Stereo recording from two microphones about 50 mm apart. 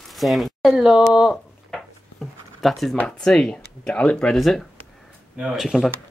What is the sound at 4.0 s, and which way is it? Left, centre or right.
Speech, left.